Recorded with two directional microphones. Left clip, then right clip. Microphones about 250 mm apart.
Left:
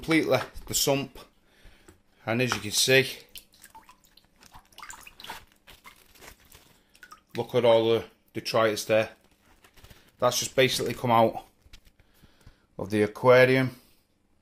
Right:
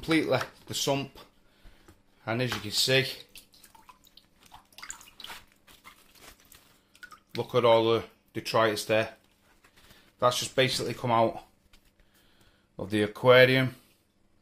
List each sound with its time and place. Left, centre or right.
0.0 s speech: centre
5.1 s bathtub: centre
7.3 s speech: centre
10.1 s speech: centre
12.7 s speech: centre